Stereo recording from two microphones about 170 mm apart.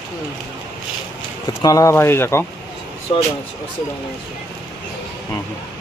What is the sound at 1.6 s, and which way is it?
Speech, 20° left (ahead or behind).